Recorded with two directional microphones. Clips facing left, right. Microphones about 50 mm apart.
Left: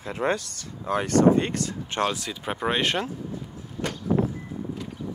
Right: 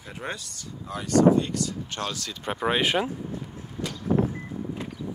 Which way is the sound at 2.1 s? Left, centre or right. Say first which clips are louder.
Left 3 dB; centre.